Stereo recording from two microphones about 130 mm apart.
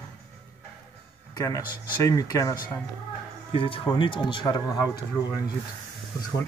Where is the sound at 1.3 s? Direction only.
25° left (ahead or behind).